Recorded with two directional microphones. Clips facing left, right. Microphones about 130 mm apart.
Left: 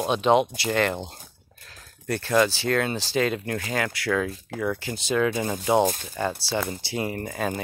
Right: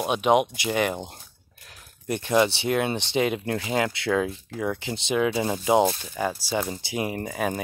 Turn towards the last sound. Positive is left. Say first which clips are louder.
# right 1 dB
turn(degrees=-15)  # may be behind; listen again after turning